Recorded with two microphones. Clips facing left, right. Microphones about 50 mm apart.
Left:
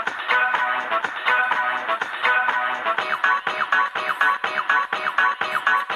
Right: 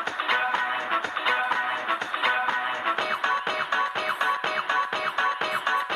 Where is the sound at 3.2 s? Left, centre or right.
Left.